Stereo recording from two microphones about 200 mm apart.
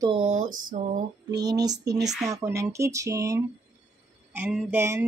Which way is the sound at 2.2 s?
15° right (ahead or behind).